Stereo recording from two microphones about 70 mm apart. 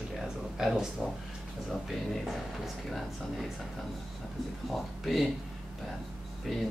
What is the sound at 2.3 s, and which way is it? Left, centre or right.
Speech, centre.